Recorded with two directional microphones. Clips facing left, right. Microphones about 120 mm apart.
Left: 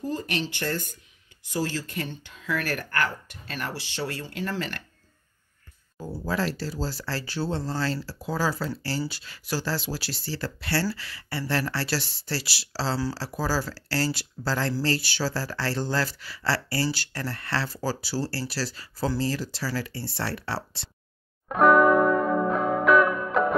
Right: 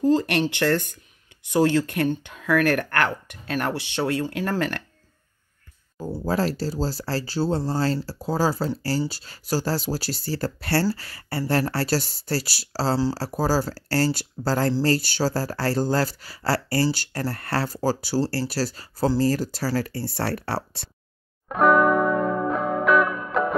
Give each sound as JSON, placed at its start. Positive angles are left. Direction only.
{"t": 0.0, "sound": "speech", "side_deg": -80}
{"t": 6.2, "sound": "speech", "side_deg": -40}
{"t": 21.5, "sound": "music", "side_deg": 0}